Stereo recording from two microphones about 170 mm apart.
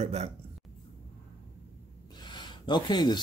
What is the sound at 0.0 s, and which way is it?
Speech, 35° right (ahead or behind).